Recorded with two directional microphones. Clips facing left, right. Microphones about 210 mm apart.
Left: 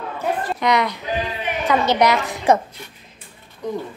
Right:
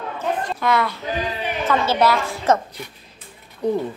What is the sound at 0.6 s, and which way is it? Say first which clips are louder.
A woman's voice: left 2 dB; 20° left (ahead or behind).